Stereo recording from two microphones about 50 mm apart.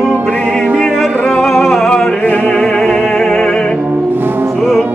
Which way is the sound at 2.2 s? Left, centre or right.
Left.